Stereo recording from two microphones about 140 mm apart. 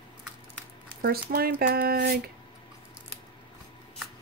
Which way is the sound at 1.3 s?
90° right.